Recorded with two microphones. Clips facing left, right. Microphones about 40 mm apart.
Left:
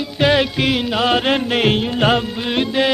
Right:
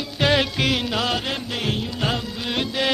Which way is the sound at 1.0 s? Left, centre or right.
Left.